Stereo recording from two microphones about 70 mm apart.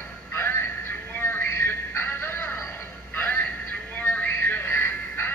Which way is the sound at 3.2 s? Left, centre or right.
Left.